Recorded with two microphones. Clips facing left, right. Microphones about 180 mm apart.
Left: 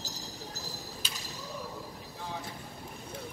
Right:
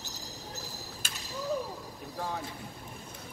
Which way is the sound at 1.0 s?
50° right (ahead or behind).